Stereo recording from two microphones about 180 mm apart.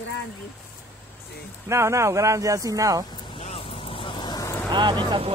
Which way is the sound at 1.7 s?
15° right (ahead or behind).